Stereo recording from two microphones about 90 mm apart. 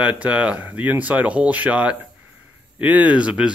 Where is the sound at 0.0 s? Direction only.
15° right (ahead or behind).